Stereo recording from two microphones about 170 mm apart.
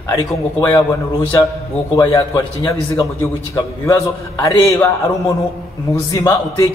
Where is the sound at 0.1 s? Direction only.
20° left (ahead or behind).